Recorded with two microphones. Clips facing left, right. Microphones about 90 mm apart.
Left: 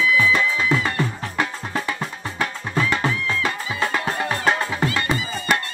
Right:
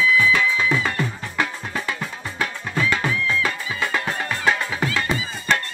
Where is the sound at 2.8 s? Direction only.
30° left (ahead or behind).